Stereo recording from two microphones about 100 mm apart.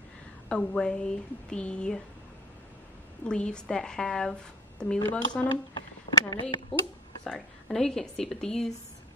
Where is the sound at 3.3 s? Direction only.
10° left (ahead or behind).